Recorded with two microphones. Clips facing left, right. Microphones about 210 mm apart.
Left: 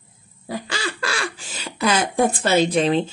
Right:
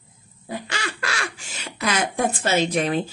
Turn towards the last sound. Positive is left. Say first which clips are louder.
# left 4 dB
turn(degrees=25)  # may be behind; listen again after turning